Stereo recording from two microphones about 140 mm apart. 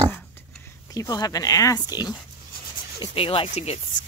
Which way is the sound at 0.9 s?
25° left (ahead or behind).